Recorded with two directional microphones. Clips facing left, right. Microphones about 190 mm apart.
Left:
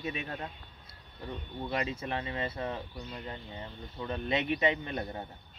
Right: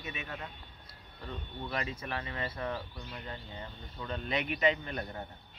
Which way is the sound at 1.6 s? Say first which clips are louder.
Left 4 dB; 25° left (ahead or behind).